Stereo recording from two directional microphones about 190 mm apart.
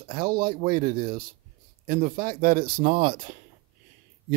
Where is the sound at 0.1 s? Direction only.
50° right (ahead or behind).